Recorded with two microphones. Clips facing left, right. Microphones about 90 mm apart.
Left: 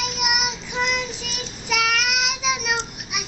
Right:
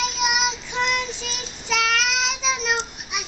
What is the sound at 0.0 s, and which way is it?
Child singing, 10° left (ahead or behind).